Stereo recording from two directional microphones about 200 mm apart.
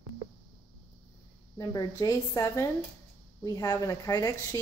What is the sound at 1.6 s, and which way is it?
Speech, 15° left (ahead or behind).